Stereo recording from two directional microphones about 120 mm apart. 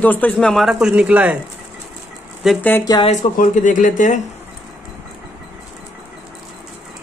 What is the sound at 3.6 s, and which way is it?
Speech, 90° left.